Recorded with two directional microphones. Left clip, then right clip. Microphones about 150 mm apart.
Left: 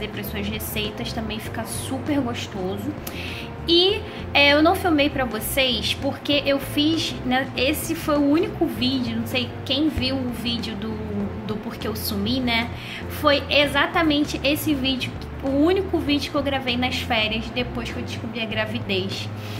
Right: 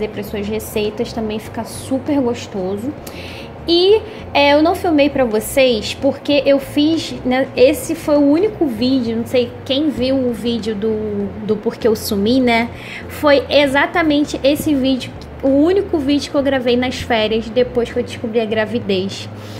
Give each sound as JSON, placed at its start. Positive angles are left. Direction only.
{"t": 0.0, "sound": "a woman's voice", "side_deg": -40}
{"t": 3.6, "sound": "a woman's voice", "side_deg": -40}